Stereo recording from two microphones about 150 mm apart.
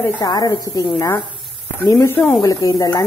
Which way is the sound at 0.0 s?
25° left (ahead or behind).